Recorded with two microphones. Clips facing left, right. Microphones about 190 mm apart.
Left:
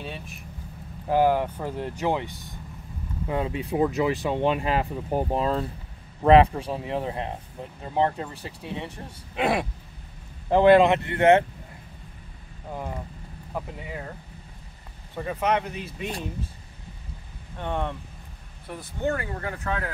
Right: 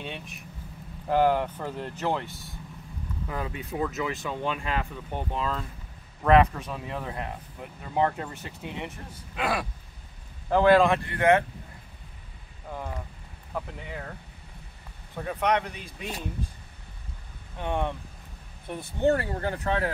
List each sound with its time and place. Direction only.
0.0 s speech: centre (ahead or behind); by 11.4 s 25° left (ahead or behind)
12.7 s speech: 10° left (ahead or behind)
15.1 s speech: 5° left (ahead or behind)
17.6 s speech: 10° right (ahead or behind)
18.7 s speech: 30° right (ahead or behind)